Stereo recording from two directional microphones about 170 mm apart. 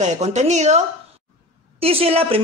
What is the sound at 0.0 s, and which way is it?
A man's voice, 45° right (ahead or behind).